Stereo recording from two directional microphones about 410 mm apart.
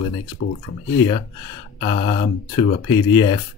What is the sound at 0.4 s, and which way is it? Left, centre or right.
Speech, left.